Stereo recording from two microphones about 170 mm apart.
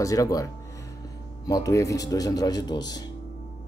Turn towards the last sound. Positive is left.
turn(degrees=25)  # may be behind; listen again after turning